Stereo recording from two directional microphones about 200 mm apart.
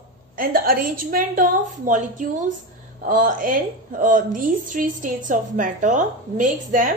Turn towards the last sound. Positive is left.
turn(degrees=-40)  # may be behind; listen again after turning